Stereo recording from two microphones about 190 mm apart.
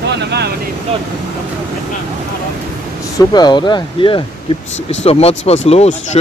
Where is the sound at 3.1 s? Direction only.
20° left (ahead or behind).